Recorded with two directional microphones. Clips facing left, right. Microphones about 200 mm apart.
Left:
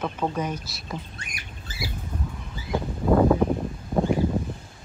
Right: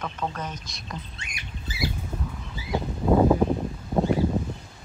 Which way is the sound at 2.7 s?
10° right (ahead or behind).